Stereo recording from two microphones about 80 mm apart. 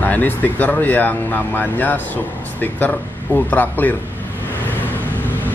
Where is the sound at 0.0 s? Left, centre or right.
Left.